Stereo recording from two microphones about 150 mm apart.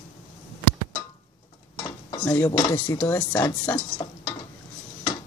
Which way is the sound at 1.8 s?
15° left (ahead or behind).